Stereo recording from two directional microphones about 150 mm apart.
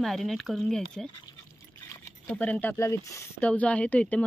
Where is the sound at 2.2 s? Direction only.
10° left (ahead or behind).